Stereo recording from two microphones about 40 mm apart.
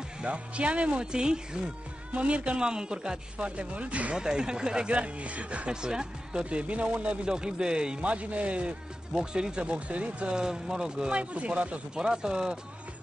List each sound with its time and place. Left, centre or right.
0.2 s speech: right
2.1 s speech: right
4.2 s speech: centre
4.9 s speech: right
5.7 s speech: centre
8.0 s speech: right
9.1 s speech: centre
9.7 s speech: right
10.3 s speech: centre